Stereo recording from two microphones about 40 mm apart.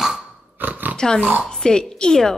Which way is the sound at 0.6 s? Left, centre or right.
Right.